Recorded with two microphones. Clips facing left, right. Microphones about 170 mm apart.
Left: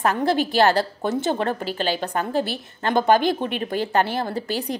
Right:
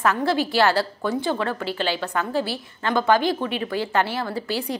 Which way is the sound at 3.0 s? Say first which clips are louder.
Left 2 dB; 20° left (ahead or behind).